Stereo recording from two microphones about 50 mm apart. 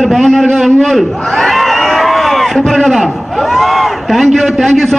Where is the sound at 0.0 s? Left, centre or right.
Centre.